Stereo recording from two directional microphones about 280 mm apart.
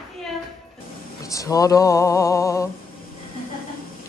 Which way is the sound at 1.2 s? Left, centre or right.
Centre.